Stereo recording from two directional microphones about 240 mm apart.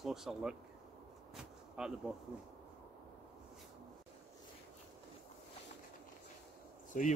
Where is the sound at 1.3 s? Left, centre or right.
Centre.